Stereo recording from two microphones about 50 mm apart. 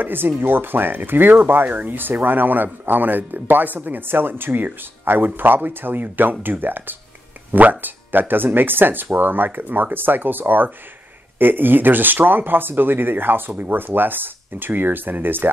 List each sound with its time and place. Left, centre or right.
0.0 s speech: right